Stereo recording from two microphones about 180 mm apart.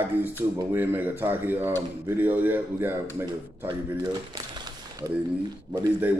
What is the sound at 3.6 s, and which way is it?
Speech, 25° right (ahead or behind).